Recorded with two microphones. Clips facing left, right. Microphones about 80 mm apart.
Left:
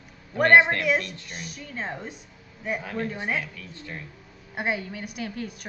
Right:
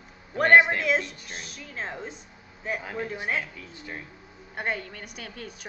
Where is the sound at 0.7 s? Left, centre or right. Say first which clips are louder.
Left 1 dB; centre.